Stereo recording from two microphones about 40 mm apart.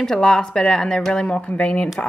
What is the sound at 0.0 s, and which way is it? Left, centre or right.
A woman's voice, centre.